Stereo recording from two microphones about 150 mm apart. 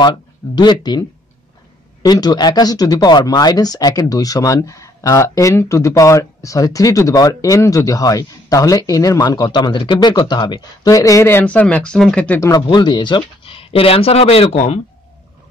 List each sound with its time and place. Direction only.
0.6 s speech: 30° left (ahead or behind)
2.0 s speech: 30° left (ahead or behind); by 12.4 s 10° left (ahead or behind)
12.4 s speech: 30° left (ahead or behind)